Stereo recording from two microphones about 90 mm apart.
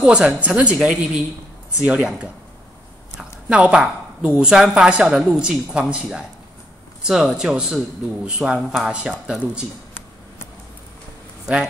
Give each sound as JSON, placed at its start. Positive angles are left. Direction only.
{"t": 0.0, "sound": "a woman's voice", "side_deg": -10}